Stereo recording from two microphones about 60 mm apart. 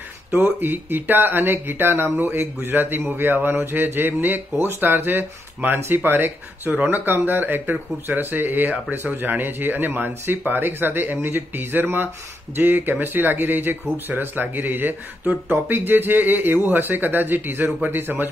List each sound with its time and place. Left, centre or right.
0.3 s speech: right